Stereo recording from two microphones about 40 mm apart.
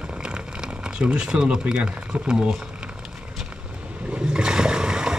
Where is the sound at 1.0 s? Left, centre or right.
Right.